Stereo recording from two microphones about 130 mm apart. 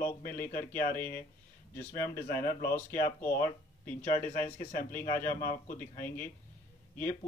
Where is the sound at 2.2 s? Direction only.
90° left.